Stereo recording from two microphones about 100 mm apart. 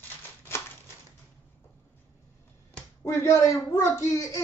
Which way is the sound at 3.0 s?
30° left (ahead or behind).